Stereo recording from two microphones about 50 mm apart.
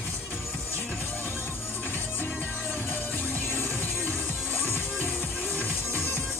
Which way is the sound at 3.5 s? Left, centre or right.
Left.